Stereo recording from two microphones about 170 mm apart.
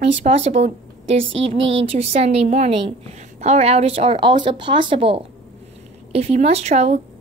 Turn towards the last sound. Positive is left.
turn(degrees=-40)  # may be behind; listen again after turning